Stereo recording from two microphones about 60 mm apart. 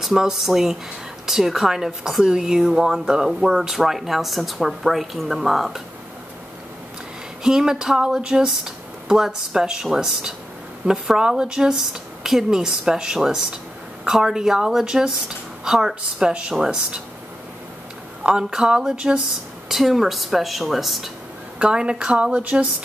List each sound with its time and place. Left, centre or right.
0.0 s a woman's voice: centre
7.4 s speech: centre
18.2 s a woman's voice: centre
21.5 s speech: centre
22.4 s a sound: right